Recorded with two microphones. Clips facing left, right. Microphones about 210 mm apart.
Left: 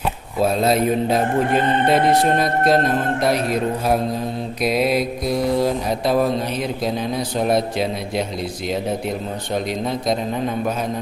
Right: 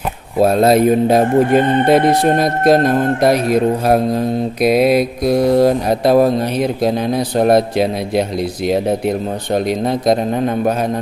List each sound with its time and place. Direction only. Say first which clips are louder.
0.4 s speech: right 7 dB; 55° right (ahead or behind)
4.6 s mantra: right 6 dB; 60° right (ahead or behind)
9.8 s mantra: right 7 dB; 60° right (ahead or behind)